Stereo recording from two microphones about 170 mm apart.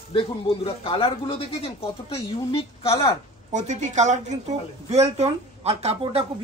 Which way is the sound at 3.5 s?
45° right (ahead or behind).